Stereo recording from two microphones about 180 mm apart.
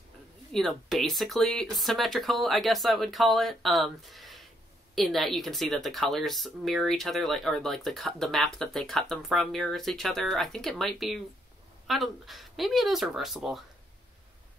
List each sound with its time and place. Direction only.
0.5 s speech: centre (ahead or behind)